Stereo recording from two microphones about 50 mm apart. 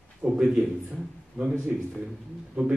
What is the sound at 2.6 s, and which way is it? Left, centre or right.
Speech, right.